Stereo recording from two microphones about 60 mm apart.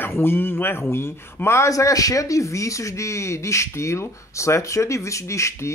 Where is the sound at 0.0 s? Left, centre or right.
Left.